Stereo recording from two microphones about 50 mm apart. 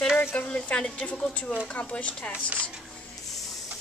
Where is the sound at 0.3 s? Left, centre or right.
Left.